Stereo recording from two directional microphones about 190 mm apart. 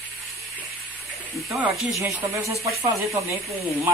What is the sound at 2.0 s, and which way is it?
Speech, 15° right (ahead or behind).